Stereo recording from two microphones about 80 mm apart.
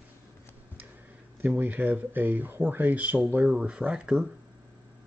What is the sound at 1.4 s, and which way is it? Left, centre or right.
Speech, right.